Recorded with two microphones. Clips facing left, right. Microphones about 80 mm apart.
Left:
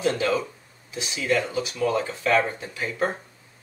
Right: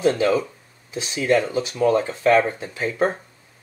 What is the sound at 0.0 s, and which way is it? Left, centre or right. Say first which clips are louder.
Speech: right 5 dB; right.